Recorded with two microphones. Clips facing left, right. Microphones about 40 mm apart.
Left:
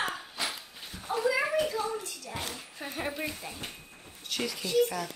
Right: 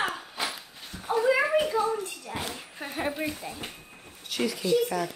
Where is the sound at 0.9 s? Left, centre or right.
Centre.